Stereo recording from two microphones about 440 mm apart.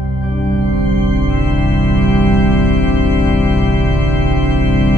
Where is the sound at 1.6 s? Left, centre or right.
Centre.